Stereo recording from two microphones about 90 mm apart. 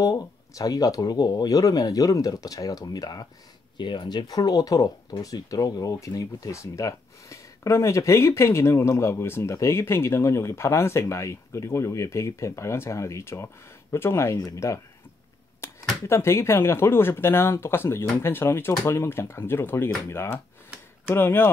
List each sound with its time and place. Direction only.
0.0 s speech: 45° left (ahead or behind)
3.7 s speech: 60° left (ahead or behind)
4.3 s speech: 45° left (ahead or behind)
16.1 s speech: 30° left (ahead or behind)